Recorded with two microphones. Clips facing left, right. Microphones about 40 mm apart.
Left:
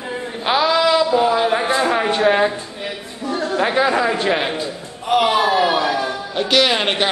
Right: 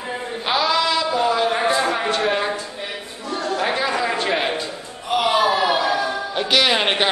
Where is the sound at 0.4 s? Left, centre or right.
Centre.